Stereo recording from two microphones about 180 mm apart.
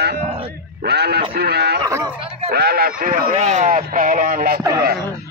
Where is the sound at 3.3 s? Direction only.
40° right (ahead or behind).